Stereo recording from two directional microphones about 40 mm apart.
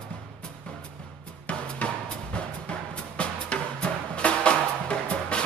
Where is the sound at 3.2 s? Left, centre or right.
Left.